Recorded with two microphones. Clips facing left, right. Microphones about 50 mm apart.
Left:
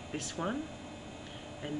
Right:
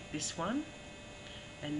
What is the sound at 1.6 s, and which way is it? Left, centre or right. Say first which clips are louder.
Speech: even; centre.